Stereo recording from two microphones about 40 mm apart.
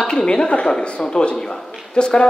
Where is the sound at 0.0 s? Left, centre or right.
Left.